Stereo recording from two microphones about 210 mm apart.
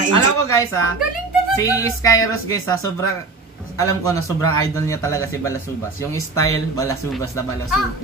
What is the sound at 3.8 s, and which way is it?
A man's voice, 15° left (ahead or behind).